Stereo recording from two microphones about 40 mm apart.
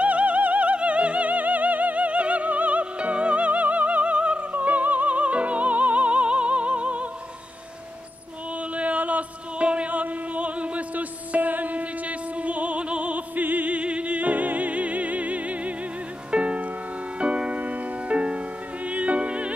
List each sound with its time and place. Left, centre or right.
0.0 s music: right
8.7 s a sound: right
9.7 s music: right
13.4 s music: right
13.7 s music: right